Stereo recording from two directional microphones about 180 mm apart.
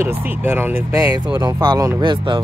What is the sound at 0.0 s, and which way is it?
Speech, 10° right (ahead or behind).